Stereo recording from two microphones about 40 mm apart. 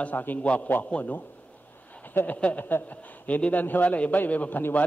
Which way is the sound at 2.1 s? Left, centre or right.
Left.